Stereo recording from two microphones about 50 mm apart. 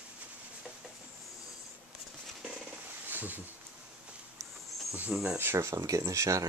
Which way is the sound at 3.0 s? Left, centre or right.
Right.